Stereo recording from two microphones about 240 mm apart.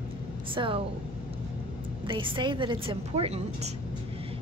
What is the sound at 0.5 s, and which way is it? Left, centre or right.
Speech, right.